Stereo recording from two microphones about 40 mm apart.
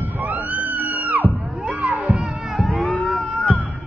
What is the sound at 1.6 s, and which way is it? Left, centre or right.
Crowd, right.